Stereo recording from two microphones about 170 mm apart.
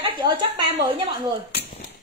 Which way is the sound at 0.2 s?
25° right (ahead or behind).